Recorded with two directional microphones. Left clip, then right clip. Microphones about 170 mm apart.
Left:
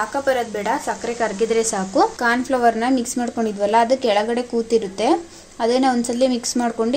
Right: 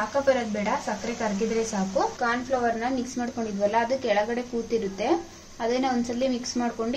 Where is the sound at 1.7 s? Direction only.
55° left (ahead or behind).